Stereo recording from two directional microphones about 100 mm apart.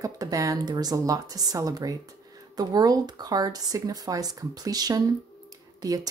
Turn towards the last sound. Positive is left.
turn(degrees=-40)  # may be behind; listen again after turning